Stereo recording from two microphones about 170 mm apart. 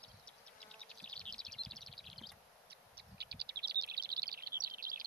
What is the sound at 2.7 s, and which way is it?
Bird, 70° right (ahead or behind).